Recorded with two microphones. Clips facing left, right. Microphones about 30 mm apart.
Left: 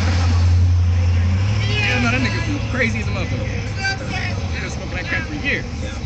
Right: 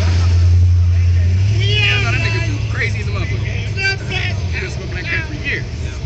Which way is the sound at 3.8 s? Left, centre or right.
Right.